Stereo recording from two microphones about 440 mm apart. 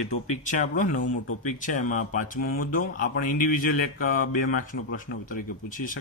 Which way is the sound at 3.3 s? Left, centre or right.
Left.